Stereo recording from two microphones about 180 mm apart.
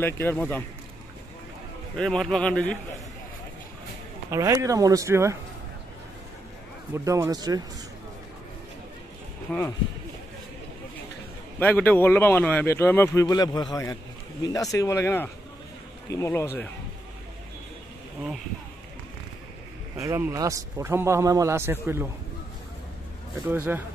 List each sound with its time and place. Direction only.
0.0 s speech: 10° left (ahead or behind)
2.0 s a man's voice: 5° left (ahead or behind)
4.3 s a man's voice: 15° right (ahead or behind)
6.9 s a man's voice: 15° right (ahead or behind)
9.5 s a man's voice: 5° left (ahead or behind)
11.6 s speech: 10° left (ahead or behind)
20.0 s a man's voice: 15° right (ahead or behind)
23.5 s a man's voice: 10° right (ahead or behind)